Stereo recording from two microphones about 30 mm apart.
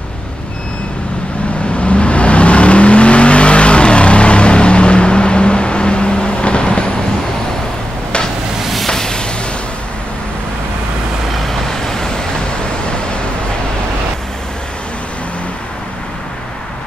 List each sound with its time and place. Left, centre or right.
1.8 s vehicle: left
8.8 s a sound: centre
11.4 s vehicle: centre